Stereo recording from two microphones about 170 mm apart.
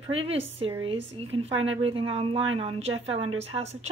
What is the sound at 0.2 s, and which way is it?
Speech, 35° right (ahead or behind).